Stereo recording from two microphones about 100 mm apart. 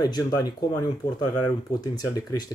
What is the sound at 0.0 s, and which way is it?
Speech, 40° left (ahead or behind).